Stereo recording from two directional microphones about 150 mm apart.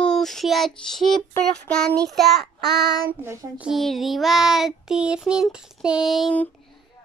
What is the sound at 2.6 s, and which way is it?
Child singing, 90° right.